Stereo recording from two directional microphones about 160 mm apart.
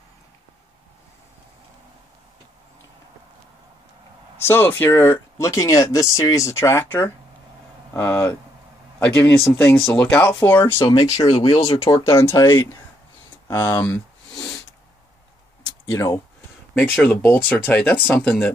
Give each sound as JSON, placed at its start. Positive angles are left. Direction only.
{"t": 4.4, "sound": "speech", "side_deg": 15}
{"t": 13.5, "sound": "speech", "side_deg": 25}
{"t": 13.8, "sound": "a sound", "side_deg": 5}
{"t": 15.9, "sound": "speech", "side_deg": 20}